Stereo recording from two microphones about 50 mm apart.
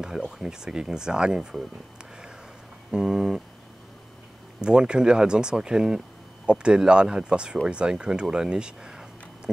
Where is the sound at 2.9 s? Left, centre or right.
Centre.